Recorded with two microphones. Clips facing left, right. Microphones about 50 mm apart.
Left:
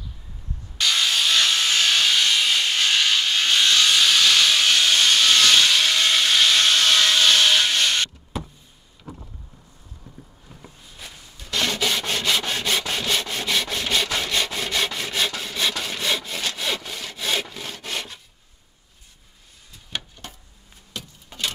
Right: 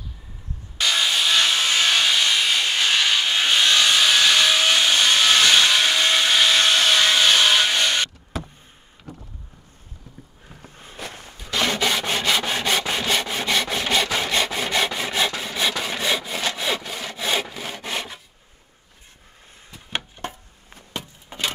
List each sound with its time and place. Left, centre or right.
0.7 s wood: centre
11.0 s walk: right
11.3 s rub: centre
19.9 s a sound: right